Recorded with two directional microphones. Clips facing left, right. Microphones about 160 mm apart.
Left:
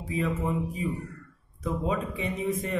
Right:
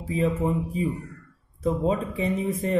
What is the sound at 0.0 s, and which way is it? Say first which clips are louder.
A man's voice: right 5 dB; 35° right (ahead or behind).